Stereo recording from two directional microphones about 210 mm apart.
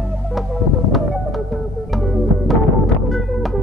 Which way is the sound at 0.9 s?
Centre (ahead or behind).